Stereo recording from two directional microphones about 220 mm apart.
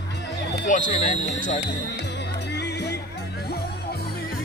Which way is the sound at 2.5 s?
50° left (ahead or behind).